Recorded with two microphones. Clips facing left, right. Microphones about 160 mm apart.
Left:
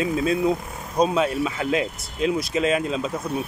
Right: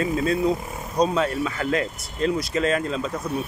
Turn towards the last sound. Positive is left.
turn(degrees=15)  # may be behind; listen again after turning